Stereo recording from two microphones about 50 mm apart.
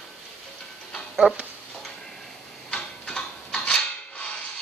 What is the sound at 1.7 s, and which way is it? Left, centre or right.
Tick-tock, centre.